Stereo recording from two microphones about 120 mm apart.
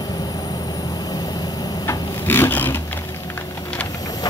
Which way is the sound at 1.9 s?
20° left (ahead or behind).